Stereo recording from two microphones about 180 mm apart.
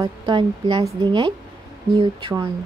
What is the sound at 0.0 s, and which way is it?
Speech, 25° right (ahead or behind).